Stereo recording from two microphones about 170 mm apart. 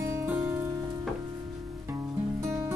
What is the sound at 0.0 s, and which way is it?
Music, 15° right (ahead or behind).